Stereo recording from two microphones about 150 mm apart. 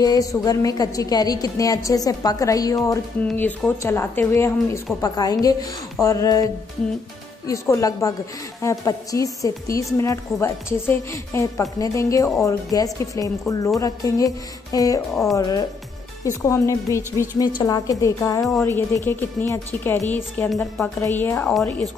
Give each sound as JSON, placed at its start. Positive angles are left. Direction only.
{"t": 0.0, "sound": "a woman's voice", "side_deg": 25}
{"t": 3.3, "sound": "a woman's voice", "side_deg": 10}